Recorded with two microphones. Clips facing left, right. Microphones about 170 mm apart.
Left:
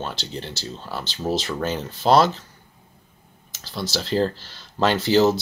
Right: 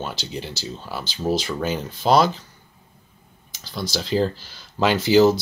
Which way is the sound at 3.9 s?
Centre (ahead or behind).